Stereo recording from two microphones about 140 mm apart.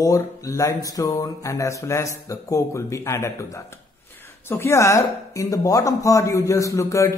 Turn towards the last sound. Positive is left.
turn(degrees=20)  # may be behind; listen again after turning